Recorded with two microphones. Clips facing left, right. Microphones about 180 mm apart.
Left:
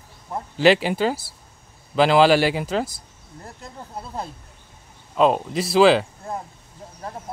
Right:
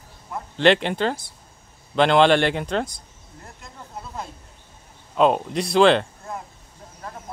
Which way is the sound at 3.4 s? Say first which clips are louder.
Left 4 dB; 35° left (ahead or behind).